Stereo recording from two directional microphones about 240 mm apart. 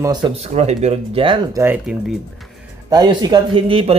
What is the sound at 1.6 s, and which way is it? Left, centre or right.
Speech, centre.